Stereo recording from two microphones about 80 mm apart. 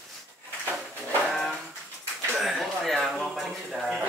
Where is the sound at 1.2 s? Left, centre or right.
Centre.